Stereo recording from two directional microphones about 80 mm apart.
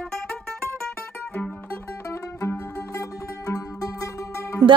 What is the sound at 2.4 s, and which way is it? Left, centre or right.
Music, left.